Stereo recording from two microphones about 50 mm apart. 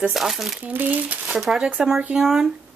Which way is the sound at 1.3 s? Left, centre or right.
Centre.